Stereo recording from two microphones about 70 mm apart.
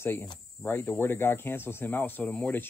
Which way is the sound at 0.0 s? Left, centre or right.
Left.